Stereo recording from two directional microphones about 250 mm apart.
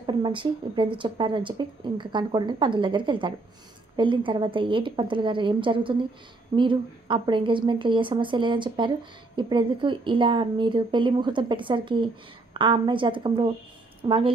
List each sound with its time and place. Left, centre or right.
0.0 s speech: centre